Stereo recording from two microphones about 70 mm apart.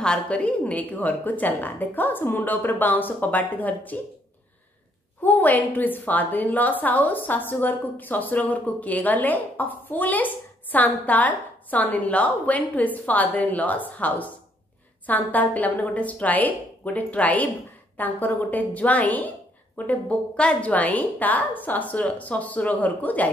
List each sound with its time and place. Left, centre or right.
0.0 s a woman's voice: centre
5.2 s a woman's voice: left